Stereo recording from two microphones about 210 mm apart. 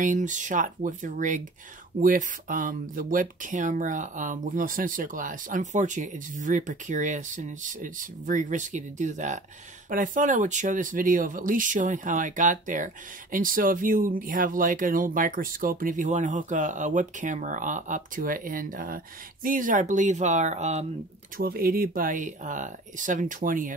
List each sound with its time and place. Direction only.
0.0 s speech: 35° right (ahead or behind)
21.4 s speech: 45° right (ahead or behind)